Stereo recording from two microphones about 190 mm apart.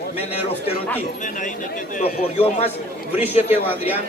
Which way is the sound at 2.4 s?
35° left (ahead or behind).